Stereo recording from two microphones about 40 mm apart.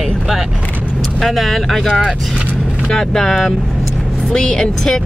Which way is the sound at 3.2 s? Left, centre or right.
Centre.